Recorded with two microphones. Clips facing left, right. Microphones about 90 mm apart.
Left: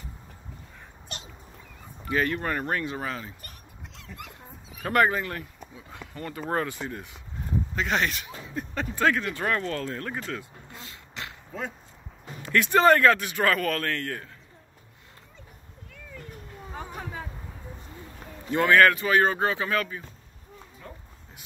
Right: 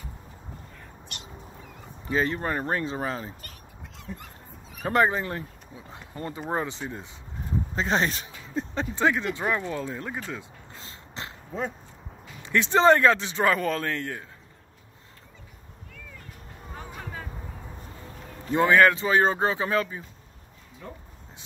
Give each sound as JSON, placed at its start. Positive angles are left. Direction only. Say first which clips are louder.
{"t": 2.0, "sound": "a man's voice", "louder": "even", "side_deg": -25}
{"t": 4.8, "sound": "a man's voice", "louder": "even", "side_deg": -20}
{"t": 10.7, "sound": "a sound", "louder": "even", "side_deg": -30}
{"t": 12.4, "sound": "a man's voice", "louder": "even", "side_deg": -25}
{"t": 18.5, "sound": "a man's voice", "louder": "even", "side_deg": -20}